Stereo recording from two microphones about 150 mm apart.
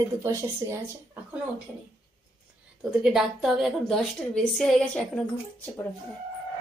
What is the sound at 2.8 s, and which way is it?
Speech, 5° right (ahead or behind).